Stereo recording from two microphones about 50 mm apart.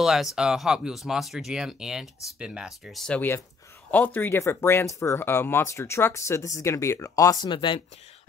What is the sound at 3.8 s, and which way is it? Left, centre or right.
Speech, left.